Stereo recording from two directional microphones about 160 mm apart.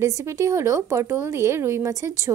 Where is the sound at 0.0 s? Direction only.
20° right (ahead or behind).